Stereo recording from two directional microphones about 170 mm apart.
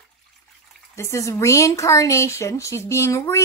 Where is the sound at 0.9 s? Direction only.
15° left (ahead or behind).